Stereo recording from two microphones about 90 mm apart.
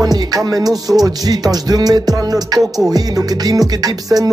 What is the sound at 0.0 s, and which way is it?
Music, 45° right (ahead or behind).